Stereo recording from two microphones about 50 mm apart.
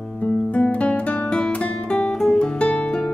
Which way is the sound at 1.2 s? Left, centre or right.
Centre.